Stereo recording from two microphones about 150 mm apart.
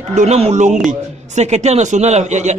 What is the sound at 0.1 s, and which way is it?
A man's voice, 50° right (ahead or behind).